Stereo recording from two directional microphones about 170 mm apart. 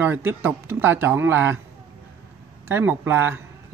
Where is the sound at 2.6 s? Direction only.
10° right (ahead or behind).